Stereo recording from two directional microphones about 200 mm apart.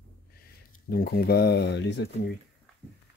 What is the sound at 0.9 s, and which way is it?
Speech, 50° left (ahead or behind).